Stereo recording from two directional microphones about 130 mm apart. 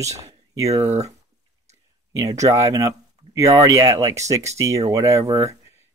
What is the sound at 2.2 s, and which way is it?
Speech, 25° right (ahead or behind).